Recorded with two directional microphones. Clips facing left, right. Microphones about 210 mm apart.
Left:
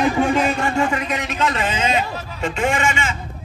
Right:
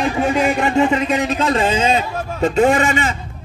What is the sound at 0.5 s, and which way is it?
A man's voice, 20° right (ahead or behind).